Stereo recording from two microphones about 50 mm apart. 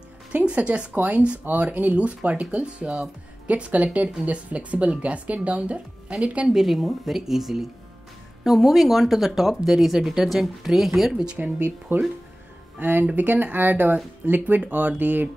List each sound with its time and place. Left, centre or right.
0.3 s music: right
0.9 s speech: right
6.5 s speech: centre
11.3 s speech: right
11.9 s speech: right